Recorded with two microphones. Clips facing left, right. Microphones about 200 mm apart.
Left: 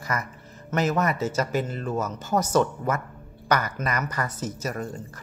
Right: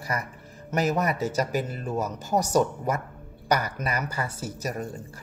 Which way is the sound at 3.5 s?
35° right (ahead or behind).